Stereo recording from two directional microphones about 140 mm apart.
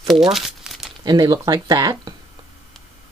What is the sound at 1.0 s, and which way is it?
Speech, 30° right (ahead or behind).